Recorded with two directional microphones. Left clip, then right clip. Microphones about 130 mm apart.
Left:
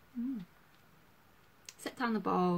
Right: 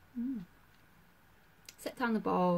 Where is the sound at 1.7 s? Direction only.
20° left (ahead or behind).